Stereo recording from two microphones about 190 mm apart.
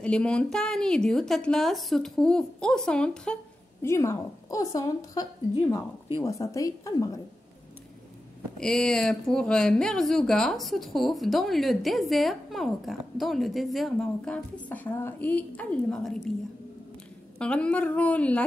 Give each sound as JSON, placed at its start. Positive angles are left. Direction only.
{"t": 0.0, "sound": "a woman's voice", "side_deg": 5}
{"t": 8.5, "sound": "speech", "side_deg": 5}
{"t": 17.4, "sound": "a woman's voice", "side_deg": 5}